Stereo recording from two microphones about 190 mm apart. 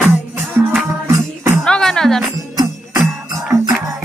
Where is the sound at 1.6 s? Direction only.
5° left (ahead or behind).